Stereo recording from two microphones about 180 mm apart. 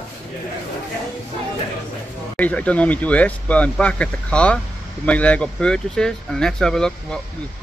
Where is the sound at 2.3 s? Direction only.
10° left (ahead or behind).